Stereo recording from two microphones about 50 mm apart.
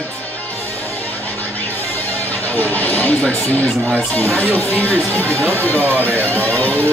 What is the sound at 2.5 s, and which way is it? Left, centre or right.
Speech, left.